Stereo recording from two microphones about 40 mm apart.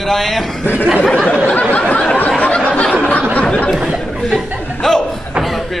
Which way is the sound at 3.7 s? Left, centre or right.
Centre.